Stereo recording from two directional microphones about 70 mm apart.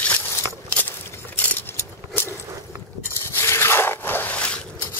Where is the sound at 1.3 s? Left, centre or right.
Left.